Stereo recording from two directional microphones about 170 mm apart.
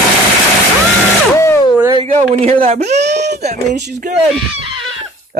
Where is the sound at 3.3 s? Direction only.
70° right (ahead or behind).